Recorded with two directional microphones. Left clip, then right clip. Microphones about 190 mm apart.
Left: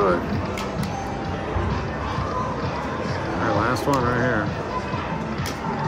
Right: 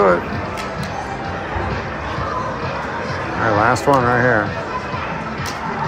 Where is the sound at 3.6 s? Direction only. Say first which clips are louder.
Right 10 dB; 25° right (ahead or behind).